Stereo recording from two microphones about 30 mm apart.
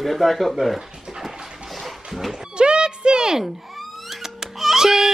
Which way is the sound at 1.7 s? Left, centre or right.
Centre.